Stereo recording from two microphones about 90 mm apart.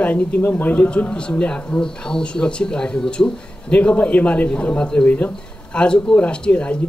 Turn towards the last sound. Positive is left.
turn(degrees=15)  # may be behind; listen again after turning